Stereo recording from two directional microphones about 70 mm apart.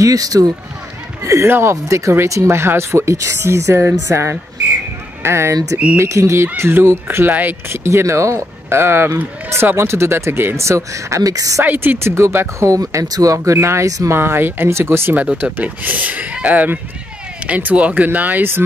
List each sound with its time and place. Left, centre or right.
0.0 s speech: right
1.2 s speech: right
11.6 s speech: right
13.5 s speech: right
14.1 s speech: right
15.5 s speech: right